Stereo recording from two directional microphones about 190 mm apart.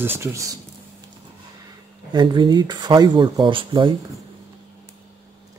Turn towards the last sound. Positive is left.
turn(degrees=-25)  # may be behind; listen again after turning